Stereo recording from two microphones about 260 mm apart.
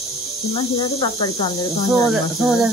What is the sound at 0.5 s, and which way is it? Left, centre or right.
Speech, centre.